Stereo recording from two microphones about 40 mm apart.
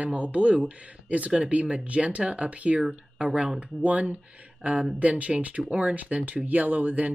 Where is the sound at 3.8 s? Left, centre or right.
Right.